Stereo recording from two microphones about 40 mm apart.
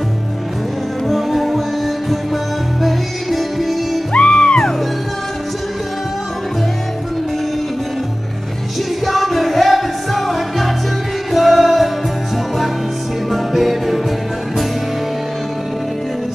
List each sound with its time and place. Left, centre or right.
1.0 s music: centre
2.8 s music: centre
4.1 s music: left
9.0 s music: centre
13.3 s music: centre